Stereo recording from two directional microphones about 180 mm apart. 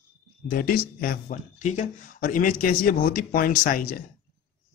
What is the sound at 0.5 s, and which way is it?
Speech, 55° left (ahead or behind).